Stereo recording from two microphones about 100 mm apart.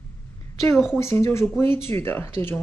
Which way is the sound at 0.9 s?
25° left (ahead or behind).